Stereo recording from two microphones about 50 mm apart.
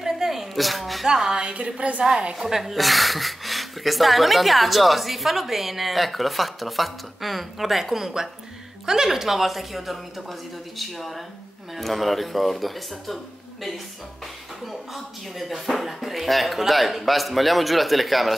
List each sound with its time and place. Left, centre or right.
0.0 s a sound: centre
1.0 s a woman's voice: centre
2.0 s a woman's voice: centre
15.3 s speech: centre